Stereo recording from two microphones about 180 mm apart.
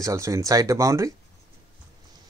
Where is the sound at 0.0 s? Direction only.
15° right (ahead or behind).